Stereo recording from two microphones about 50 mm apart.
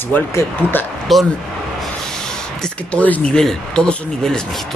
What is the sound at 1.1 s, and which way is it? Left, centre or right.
Speech, centre.